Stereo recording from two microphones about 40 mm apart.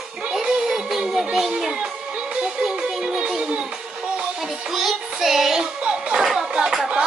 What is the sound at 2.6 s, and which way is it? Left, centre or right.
Music, right.